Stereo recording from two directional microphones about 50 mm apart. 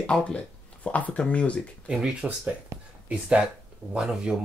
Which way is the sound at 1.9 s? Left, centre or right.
Centre.